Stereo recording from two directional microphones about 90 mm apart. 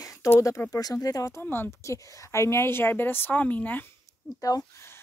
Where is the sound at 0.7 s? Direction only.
40° left (ahead or behind).